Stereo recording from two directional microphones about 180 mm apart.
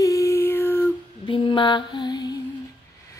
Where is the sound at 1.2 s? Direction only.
30° left (ahead or behind).